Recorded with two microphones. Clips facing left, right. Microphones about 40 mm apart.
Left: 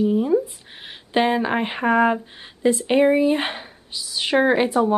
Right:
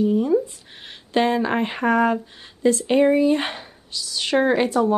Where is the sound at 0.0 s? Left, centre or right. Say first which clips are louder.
Even; centre.